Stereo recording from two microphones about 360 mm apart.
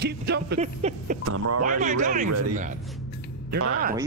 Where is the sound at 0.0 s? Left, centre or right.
Right.